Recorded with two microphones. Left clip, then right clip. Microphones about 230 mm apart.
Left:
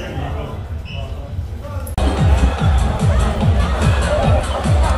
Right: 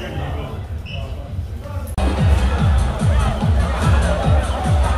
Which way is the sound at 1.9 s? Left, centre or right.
Left.